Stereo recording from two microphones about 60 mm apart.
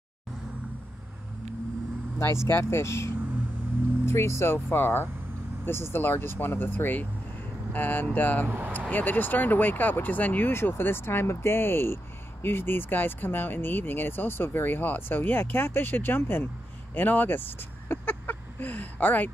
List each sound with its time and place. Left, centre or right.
2.1 s speech: left
8.5 s speech: right
8.9 s speech: left
10.5 s speech: left
17.8 s a sound: left